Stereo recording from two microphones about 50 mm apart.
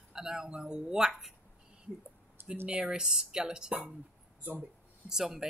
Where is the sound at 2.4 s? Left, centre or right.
Right.